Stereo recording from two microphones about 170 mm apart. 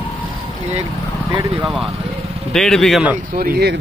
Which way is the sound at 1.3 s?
20° right (ahead or behind).